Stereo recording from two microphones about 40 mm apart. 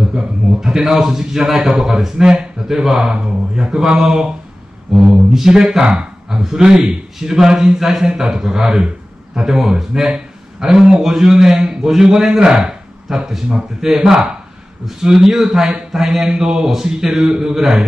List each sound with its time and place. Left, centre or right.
0.1 s a man's voice: centre